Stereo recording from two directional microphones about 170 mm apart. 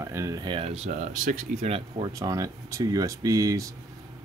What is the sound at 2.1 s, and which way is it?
Speech, 20° right (ahead or behind).